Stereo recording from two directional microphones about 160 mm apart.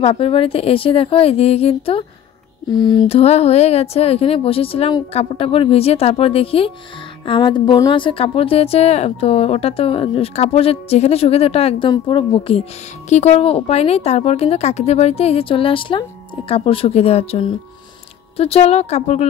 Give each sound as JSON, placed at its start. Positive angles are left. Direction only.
{"t": 0.0, "sound": "speech", "side_deg": 35}